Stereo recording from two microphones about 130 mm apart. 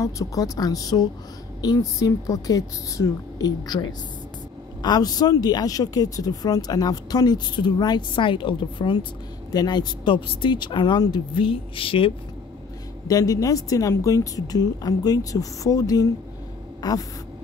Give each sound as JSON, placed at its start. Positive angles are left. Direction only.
{"t": 0.0, "sound": "a woman's voice", "side_deg": 25}
{"t": 13.1, "sound": "a woman's voice", "side_deg": 25}